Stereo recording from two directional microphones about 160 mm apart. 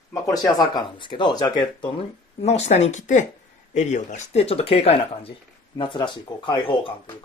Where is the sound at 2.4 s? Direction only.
45° left (ahead or behind).